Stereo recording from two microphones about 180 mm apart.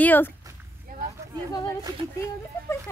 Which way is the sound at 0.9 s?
55° right (ahead or behind).